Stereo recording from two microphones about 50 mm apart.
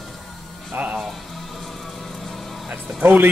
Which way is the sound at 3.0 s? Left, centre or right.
Right.